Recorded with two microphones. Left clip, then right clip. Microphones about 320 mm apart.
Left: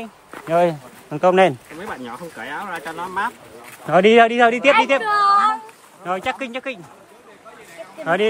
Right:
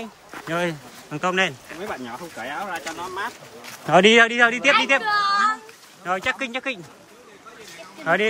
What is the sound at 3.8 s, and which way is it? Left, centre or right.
A man's voice, centre.